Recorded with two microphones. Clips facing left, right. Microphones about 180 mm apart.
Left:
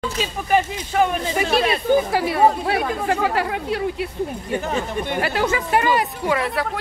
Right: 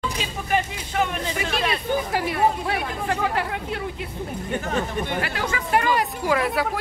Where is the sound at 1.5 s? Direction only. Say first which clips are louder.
Left 8 dB; 30° left (ahead or behind).